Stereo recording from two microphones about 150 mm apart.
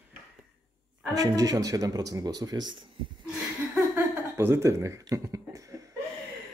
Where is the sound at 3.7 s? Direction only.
15° right (ahead or behind).